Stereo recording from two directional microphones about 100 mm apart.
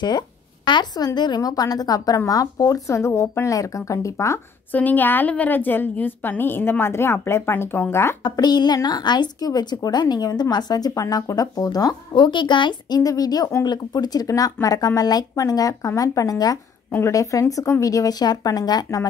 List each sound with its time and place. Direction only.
0.7 s a woman's voice: 45° left (ahead or behind)
4.7 s a woman's voice: 15° left (ahead or behind)
8.2 s speech: 45° left (ahead or behind)
13.0 s a woman's voice: 40° left (ahead or behind)